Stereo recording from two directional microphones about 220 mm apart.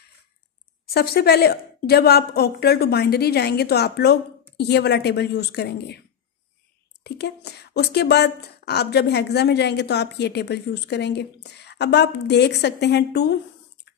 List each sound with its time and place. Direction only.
0.8 s speech: 45° left (ahead or behind)
7.0 s speech: 50° left (ahead or behind)